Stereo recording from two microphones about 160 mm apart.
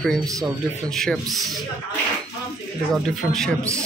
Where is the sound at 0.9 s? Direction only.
Centre (ahead or behind).